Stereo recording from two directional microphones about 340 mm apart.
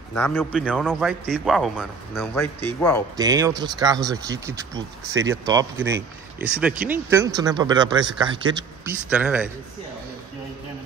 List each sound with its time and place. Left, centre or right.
0.1 s a man's voice: centre
3.2 s a man's voice: centre